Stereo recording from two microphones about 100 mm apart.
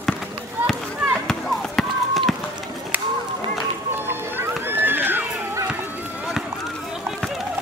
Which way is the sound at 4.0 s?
20° right (ahead or behind).